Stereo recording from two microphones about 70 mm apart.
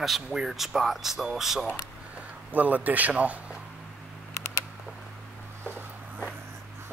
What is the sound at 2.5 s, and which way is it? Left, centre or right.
A man's voice, right.